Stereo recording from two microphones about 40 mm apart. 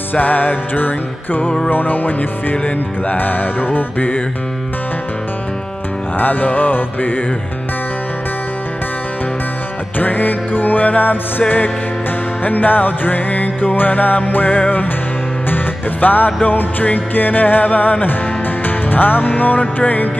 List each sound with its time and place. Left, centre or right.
0.1 s music: left
6.1 s music: left
9.9 s music: left